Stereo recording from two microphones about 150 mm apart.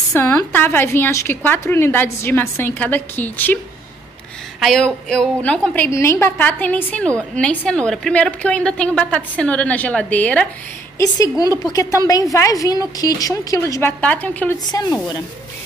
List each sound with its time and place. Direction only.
0.1 s a woman's voice: 15° left (ahead or behind)
4.6 s a woman's voice: 5° left (ahead or behind)
5.9 s a woman's voice: 20° left (ahead or behind)
11.0 s a woman's voice: 25° left (ahead or behind)
14.7 s a woman's voice: 25° left (ahead or behind)